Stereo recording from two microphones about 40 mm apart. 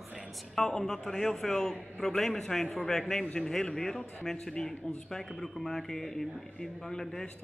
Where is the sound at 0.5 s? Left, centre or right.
Centre.